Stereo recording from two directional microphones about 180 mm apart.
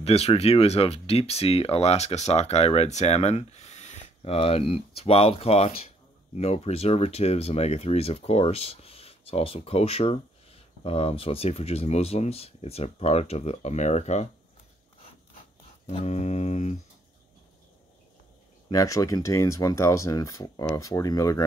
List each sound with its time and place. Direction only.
0.0 s speech: 35° left (ahead or behind)
15.9 s speech: 40° left (ahead or behind)
18.7 s speech: 20° left (ahead or behind)